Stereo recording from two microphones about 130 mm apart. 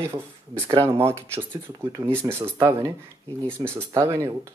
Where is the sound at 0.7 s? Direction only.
20° right (ahead or behind).